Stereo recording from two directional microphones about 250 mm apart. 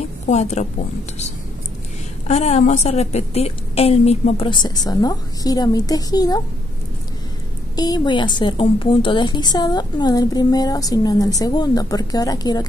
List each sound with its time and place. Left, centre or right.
0.3 s a woman's voice: left
2.2 s a woman's voice: left
7.7 s a woman's voice: centre